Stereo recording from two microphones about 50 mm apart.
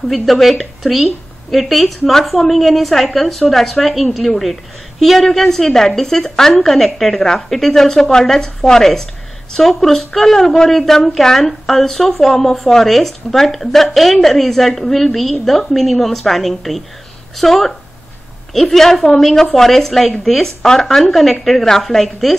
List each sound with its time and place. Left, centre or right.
0.1 s a woman's voice: centre